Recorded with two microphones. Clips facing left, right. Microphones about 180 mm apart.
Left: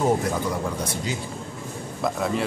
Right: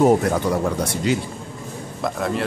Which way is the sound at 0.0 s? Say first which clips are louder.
Right 6 dB; 65° right (ahead or behind).